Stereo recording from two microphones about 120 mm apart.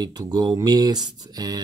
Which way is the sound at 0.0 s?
35° right (ahead or behind).